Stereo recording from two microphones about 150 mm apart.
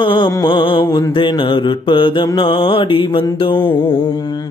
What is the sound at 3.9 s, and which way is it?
Mantra, 30° left (ahead or behind).